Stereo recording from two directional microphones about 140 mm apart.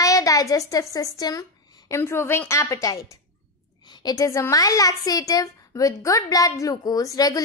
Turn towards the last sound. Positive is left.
turn(degrees=25)  # may be behind; listen again after turning